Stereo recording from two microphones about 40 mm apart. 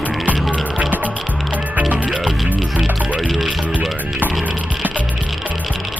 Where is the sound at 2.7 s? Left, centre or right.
Right.